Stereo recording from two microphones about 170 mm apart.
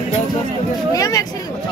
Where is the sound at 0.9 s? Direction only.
20° left (ahead or behind).